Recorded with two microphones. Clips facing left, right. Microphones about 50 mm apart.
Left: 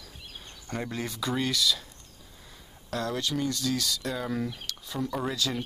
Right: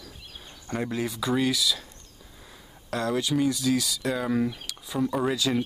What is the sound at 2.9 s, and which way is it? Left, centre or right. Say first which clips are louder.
Speech: right 4 dB; centre.